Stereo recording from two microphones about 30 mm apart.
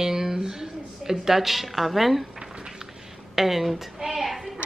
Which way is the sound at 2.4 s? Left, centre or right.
Right.